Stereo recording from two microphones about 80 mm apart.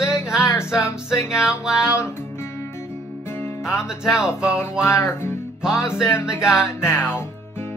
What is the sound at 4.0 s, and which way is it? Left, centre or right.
Music, centre.